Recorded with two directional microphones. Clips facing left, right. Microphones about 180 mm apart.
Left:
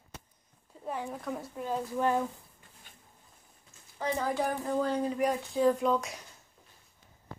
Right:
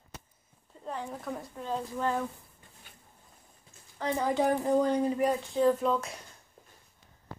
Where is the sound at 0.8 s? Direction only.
10° left (ahead or behind).